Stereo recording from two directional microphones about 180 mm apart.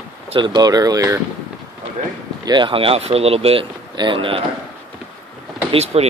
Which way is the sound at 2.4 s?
25° right (ahead or behind).